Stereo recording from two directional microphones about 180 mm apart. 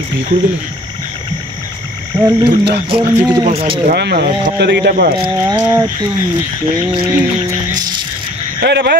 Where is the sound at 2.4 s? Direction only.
70° right (ahead or behind).